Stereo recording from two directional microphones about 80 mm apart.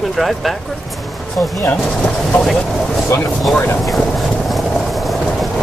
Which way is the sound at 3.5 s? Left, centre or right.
Left.